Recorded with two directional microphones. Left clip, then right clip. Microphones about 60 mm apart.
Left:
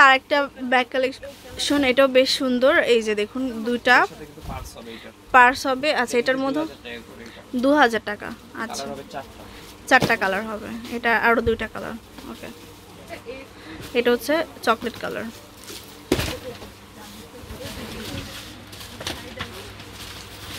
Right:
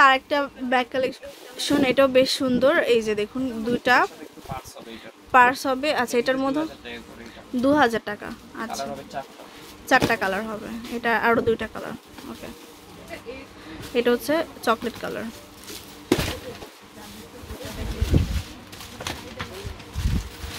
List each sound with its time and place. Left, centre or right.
0.0 s speech: centre
2.2 s speech: right
2.7 s speech: centre
5.3 s speech: centre
7.5 s speech: centre
10.9 s speech: centre
11.1 s speech: right
11.7 s speech: centre
13.7 s speech: centre